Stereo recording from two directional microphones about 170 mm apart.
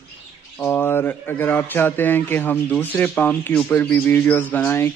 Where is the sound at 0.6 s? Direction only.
15° left (ahead or behind).